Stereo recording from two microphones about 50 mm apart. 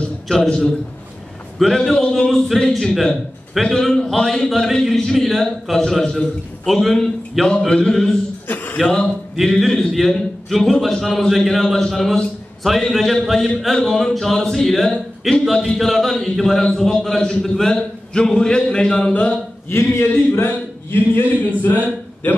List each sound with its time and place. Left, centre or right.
0.3 s a man's voice: centre
2.2 s a man's voice: centre
4.5 s a man's voice: centre
8.5 s a sound: left
8.8 s a man's voice: centre
9.9 s a man's voice: centre
14.9 s a man's voice: centre
15.4 s a man's voice: centre; by 19.3 s left
19.7 s a man's voice: left